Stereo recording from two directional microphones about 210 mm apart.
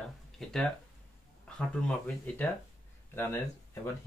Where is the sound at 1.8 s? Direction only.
5° left (ahead or behind).